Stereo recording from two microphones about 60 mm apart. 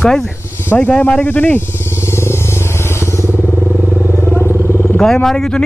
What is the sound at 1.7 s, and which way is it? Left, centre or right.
Vehicle, left.